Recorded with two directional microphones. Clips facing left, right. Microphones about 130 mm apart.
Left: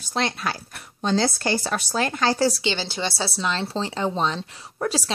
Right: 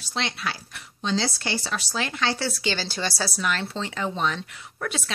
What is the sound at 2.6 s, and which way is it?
Speech, 20° left (ahead or behind).